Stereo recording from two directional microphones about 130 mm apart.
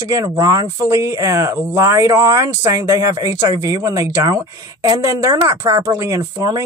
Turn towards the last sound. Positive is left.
turn(degrees=-20)  # may be behind; listen again after turning